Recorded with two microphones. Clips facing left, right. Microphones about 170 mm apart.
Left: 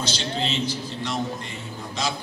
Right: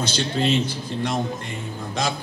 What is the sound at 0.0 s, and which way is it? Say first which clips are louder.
Speech: right 4 dB; 55° right (ahead or behind).